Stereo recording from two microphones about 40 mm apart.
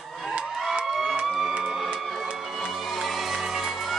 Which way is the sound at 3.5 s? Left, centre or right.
Centre.